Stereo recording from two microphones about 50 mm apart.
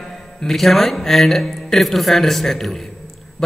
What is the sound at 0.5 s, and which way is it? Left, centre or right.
A man's voice, centre.